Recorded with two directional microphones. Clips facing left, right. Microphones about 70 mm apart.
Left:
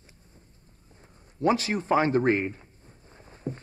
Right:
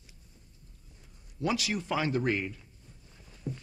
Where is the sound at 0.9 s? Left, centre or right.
Left.